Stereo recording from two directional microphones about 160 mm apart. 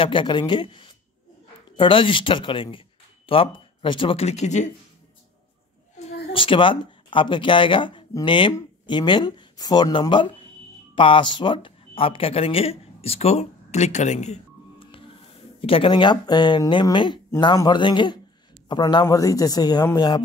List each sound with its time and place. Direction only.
0.0 s speech: 30° left (ahead or behind); by 4.6 s 45° left (ahead or behind)
5.9 s speech: 40° left (ahead or behind)